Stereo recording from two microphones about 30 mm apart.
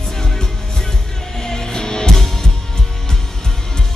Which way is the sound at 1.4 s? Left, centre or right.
Left.